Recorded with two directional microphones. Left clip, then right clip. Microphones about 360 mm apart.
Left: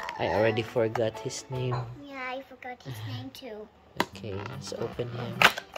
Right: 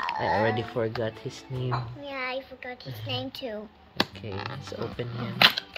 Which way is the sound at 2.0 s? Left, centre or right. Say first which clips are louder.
Right 4 dB; centre.